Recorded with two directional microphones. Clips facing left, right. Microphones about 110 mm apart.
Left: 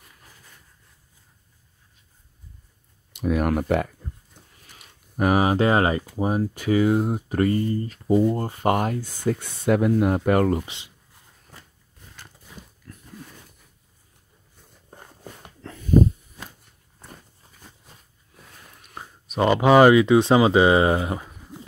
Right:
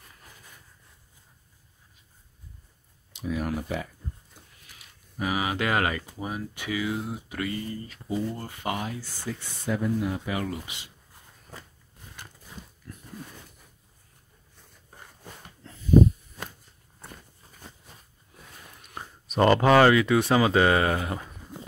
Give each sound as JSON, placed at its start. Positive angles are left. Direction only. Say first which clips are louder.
{"t": 3.1, "sound": "speech", "louder": "left 7 dB", "side_deg": 60}
{"t": 10.6, "sound": "speech", "louder": "left 4 dB", "side_deg": 30}
{"t": 15.0, "sound": "dog", "louder": "left 3 dB", "side_deg": 65}
{"t": 18.8, "sound": "a sound", "louder": "left 1 dB", "side_deg": 5}
{"t": 19.5, "sound": "speech", "louder": "left 5 dB", "side_deg": 15}